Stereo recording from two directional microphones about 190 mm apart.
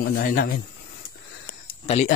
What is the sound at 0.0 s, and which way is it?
Speech, 50° left (ahead or behind).